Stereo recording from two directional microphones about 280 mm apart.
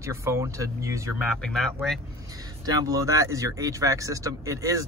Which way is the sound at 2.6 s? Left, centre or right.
Centre.